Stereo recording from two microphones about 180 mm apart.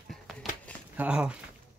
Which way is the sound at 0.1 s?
Centre (ahead or behind).